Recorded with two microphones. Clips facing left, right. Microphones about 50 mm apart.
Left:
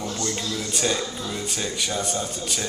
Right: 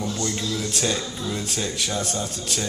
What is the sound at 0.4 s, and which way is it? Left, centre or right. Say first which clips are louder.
Speech: even; centre.